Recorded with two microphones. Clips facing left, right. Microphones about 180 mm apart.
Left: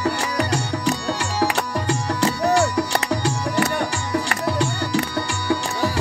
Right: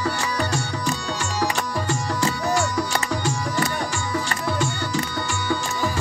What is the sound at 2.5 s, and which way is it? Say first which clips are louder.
Music: left 4 dB; 35° left (ahead or behind).